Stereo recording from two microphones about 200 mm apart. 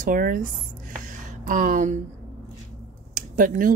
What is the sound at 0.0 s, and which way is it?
Speech, 40° right (ahead or behind).